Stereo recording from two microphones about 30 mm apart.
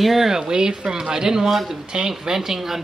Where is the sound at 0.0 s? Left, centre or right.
Centre.